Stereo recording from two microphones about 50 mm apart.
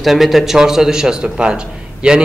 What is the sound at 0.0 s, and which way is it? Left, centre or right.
A man's voice, centre.